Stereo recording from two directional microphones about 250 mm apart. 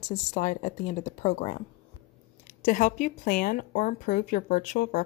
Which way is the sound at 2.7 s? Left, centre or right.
Left.